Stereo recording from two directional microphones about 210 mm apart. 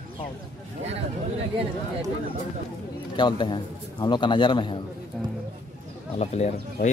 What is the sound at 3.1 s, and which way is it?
A man's voice, 20° left (ahead or behind).